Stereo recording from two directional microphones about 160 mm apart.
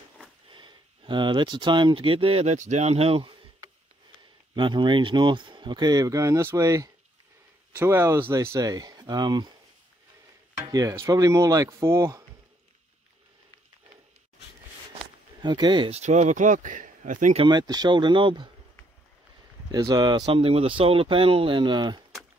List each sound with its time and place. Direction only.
0.5 s speech: 30° right (ahead or behind)
4.6 s speech: 30° right (ahead or behind)
10.6 s speech: 20° right (ahead or behind)
15.4 s speech: 25° right (ahead or behind)
15.9 s speech: 45° right (ahead or behind)
17.4 s speech: 25° right (ahead or behind)
19.7 s speech: 25° right (ahead or behind)
20.2 s speech: 35° right (ahead or behind)